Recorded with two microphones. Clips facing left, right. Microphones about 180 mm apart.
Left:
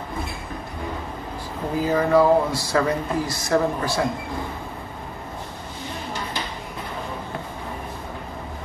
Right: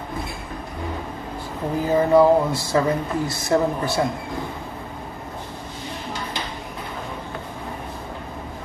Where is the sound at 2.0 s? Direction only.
20° right (ahead or behind).